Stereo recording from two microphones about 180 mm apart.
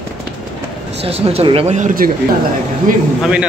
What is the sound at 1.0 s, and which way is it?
Speech, 35° right (ahead or behind).